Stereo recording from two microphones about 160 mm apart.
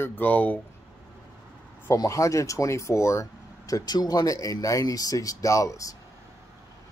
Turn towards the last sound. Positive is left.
turn(degrees=20)  # may be behind; listen again after turning